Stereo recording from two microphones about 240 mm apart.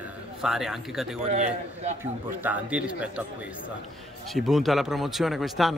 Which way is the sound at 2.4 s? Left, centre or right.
Centre.